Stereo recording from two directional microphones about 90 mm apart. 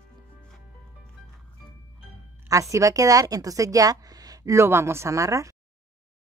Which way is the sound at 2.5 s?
35° right (ahead or behind).